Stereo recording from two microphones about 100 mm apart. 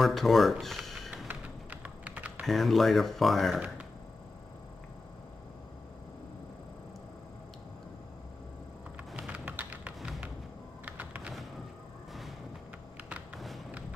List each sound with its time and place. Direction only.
0.0 s speech: centre (ahead or behind)
1.2 s typing: 15° right (ahead or behind)
2.4 s speech: centre (ahead or behind)
9.1 s typing: 10° right (ahead or behind)
10.9 s computer keyboard: 15° right (ahead or behind)
12.1 s music: centre (ahead or behind)